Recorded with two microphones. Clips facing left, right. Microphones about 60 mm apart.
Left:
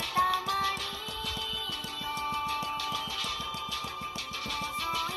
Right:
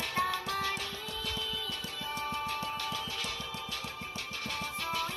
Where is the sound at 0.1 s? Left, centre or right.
Right.